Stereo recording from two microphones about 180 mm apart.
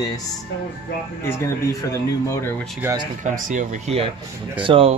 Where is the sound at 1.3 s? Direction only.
15° left (ahead or behind).